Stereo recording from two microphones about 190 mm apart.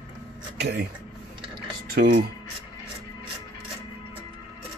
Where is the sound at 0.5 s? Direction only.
60° right (ahead or behind).